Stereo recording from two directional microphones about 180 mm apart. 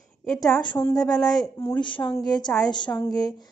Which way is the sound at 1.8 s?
25° left (ahead or behind).